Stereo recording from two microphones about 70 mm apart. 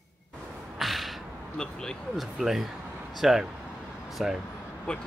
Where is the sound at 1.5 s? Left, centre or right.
Centre.